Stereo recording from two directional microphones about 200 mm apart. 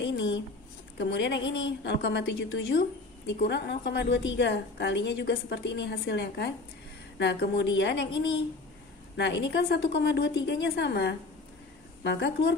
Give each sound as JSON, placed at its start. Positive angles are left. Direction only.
{"t": 0.0, "sound": "a woman's voice", "side_deg": 65}
{"t": 9.1, "sound": "a woman's voice", "side_deg": 60}